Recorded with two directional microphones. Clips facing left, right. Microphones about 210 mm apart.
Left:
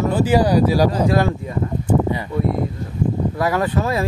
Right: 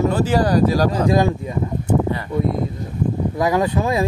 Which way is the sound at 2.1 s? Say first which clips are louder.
Left 1 dB; 15° left (ahead or behind).